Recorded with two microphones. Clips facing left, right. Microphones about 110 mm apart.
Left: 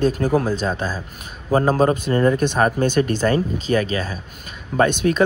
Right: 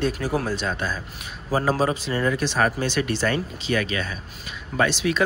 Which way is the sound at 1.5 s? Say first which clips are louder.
Left 5 dB; 50° left (ahead or behind).